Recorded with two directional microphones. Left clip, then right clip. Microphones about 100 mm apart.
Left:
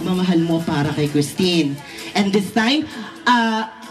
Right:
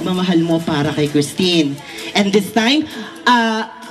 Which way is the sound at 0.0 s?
20° right (ahead or behind).